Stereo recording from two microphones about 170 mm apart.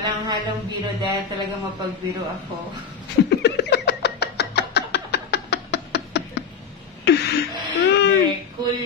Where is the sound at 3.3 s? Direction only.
80° left.